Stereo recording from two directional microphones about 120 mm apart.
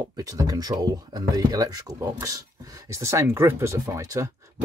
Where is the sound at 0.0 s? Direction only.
30° right (ahead or behind).